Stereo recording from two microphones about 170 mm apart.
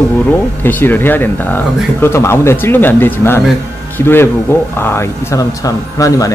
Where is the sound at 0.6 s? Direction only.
10° left (ahead or behind).